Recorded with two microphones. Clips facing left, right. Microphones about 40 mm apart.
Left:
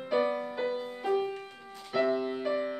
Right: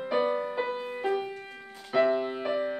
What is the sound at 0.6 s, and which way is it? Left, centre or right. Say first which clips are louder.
Music: even; right.